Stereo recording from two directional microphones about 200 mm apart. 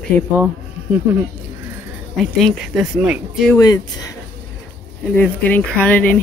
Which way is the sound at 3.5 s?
20° left (ahead or behind).